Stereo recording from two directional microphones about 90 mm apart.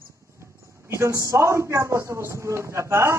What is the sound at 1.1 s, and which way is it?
A man's voice, 35° right (ahead or behind).